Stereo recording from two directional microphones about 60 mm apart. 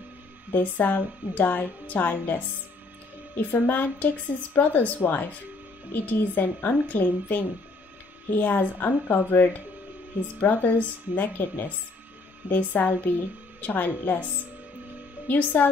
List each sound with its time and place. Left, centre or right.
0.5 s a woman's voice: left
3.6 s a woman's voice: left
15.2 s a woman's voice: left